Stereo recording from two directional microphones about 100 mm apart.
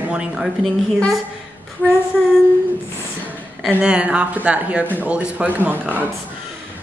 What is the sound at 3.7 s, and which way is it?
A woman's voice, 10° right (ahead or behind).